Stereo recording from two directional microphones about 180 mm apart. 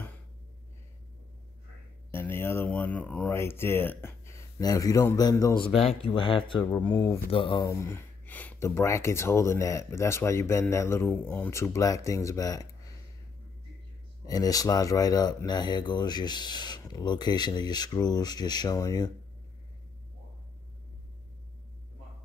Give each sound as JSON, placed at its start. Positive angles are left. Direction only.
{"t": 2.0, "sound": "speech", "side_deg": 15}
{"t": 6.7, "sound": "speech", "side_deg": 10}
{"t": 7.0, "sound": "speech", "side_deg": 30}
{"t": 7.6, "sound": "speech", "side_deg": 15}
{"t": 14.2, "sound": "speech", "side_deg": 20}